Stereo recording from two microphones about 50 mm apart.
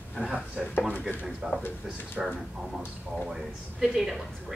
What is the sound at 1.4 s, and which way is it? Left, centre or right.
Speech, centre.